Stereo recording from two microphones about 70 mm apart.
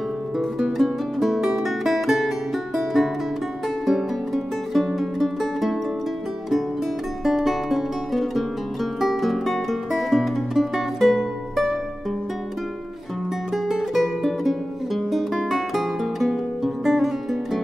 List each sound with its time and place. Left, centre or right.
0.4 s music: centre
7.2 s music: centre
13.7 s music: centre